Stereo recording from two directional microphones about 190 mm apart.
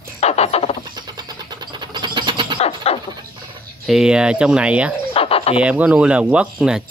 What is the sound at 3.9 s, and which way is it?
Speech, 5° right (ahead or behind).